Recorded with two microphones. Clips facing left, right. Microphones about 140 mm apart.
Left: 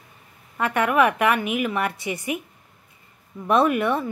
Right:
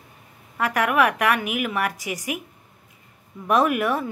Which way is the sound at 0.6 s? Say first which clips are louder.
Left 1 dB; 5° right (ahead or behind).